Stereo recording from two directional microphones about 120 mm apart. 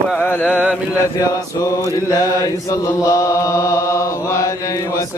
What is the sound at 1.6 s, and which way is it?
Chant, 30° left (ahead or behind).